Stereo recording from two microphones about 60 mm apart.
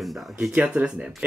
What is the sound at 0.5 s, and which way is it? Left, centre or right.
Speech, right.